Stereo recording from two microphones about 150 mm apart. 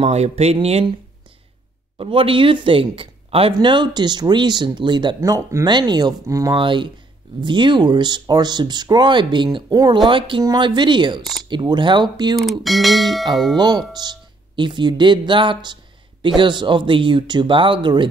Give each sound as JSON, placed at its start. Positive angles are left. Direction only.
{"t": 0.0, "sound": "speech", "side_deg": -45}
{"t": 2.0, "sound": "speech", "side_deg": -35}
{"t": 6.5, "sound": "speech", "side_deg": -35}
{"t": 12.4, "sound": "speech", "side_deg": 0}
{"t": 13.6, "sound": "speech", "side_deg": -30}